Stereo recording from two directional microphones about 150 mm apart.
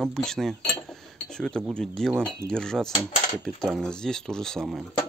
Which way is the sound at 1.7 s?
5° left (ahead or behind).